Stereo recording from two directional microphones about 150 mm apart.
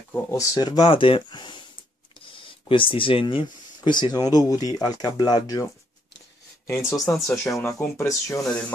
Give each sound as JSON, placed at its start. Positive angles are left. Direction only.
{"t": 0.1, "sound": "speech", "side_deg": 15}
{"t": 0.6, "sound": "speech", "side_deg": 30}
{"t": 6.7, "sound": "speech", "side_deg": 20}
{"t": 7.0, "sound": "speech", "side_deg": 0}
{"t": 7.4, "sound": "speech", "side_deg": 20}